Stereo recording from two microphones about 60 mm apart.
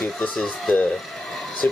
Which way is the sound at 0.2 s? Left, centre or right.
Centre.